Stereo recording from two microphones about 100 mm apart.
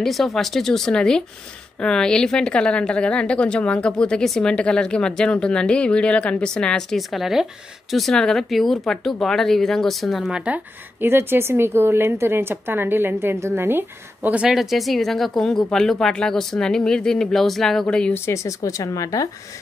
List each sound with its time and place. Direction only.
0.0 s a woman's voice: centre (ahead or behind); by 14.4 s 20° right (ahead or behind)
14.4 s speech: 5° right (ahead or behind)
18.1 s speech: 25° left (ahead or behind)